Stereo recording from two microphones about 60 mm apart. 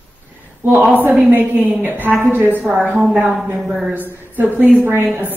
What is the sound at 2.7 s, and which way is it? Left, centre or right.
A woman's voice, centre.